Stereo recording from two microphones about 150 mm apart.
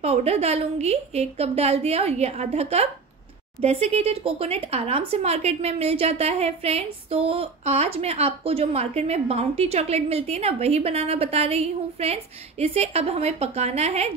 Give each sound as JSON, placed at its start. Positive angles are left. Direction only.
{"t": 0.0, "sound": "speech", "side_deg": -45}